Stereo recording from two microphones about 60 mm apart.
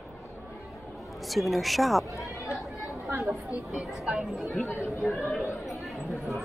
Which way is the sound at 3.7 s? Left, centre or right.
Centre.